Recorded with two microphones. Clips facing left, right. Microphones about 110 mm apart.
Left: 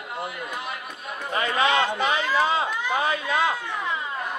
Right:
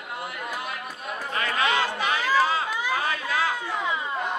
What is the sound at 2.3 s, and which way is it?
Run, 20° left (ahead or behind).